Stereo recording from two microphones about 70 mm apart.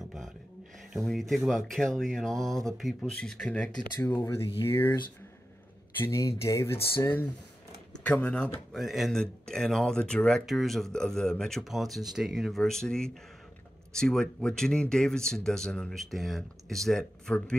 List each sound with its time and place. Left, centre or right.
0.9 s speech: centre
3.2 s speech: centre
4.2 s speech: left
5.9 s speech: left
8.1 s speech: centre
8.7 s speech: centre
9.1 s speech: centre
11.6 s speech: centre